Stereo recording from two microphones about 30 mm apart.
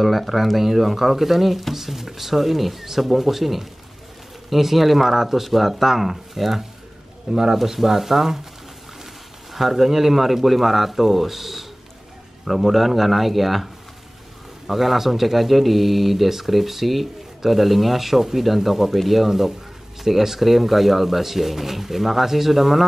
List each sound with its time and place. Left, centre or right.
0.0 s speech: centre
7.3 s speech: right
7.6 s speech: centre
9.5 s speech: centre
14.7 s speech: centre